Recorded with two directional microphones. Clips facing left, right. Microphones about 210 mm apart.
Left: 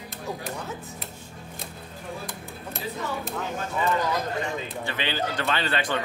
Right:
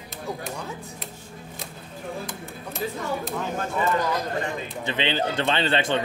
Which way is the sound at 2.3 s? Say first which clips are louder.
Right 2 dB; centre (ahead or behind).